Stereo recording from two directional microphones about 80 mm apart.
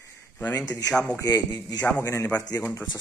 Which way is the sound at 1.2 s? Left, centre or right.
Left.